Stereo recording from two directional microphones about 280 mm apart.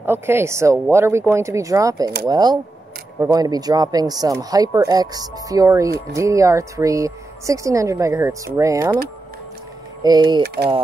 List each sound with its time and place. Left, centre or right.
0.0 s speech: centre
10.0 s speech: centre
10.4 s speech: right